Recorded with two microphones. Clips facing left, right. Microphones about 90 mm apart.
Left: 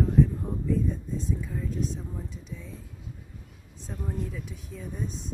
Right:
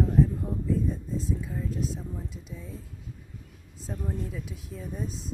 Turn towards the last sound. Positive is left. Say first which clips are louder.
# even
turn(degrees=0)  # may be behind; listen again after turning